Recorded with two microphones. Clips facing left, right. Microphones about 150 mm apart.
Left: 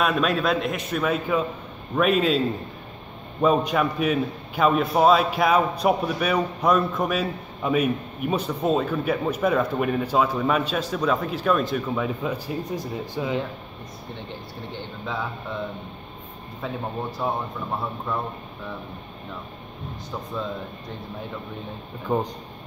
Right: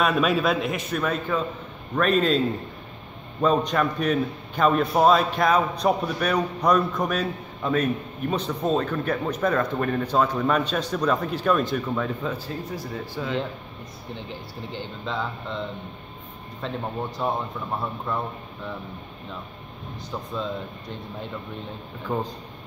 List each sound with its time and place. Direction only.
0.0 s a man's voice: centre (ahead or behind); by 13.3 s 15° left (ahead or behind)
14.7 s a man's voice: centre (ahead or behind)
16.6 s a man's voice: 5° left (ahead or behind)
22.0 s a man's voice: 15° left (ahead or behind)